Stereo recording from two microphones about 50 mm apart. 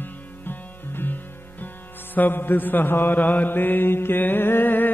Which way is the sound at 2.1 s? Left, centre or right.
Left.